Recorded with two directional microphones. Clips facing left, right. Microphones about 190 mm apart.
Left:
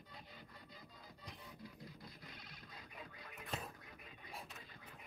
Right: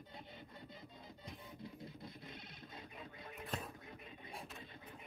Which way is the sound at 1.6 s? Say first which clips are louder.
Right 7 dB; 25° right (ahead or behind).